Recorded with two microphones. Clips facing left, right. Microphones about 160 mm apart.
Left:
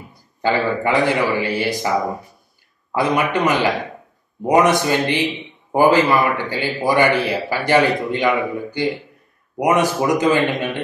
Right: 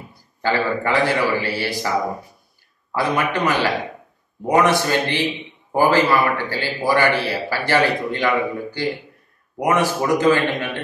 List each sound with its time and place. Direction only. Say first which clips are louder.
0.4 s a man's voice: left 2 dB; 20° left (ahead or behind)
2.9 s a man's voice: left 3 dB; 20° left (ahead or behind)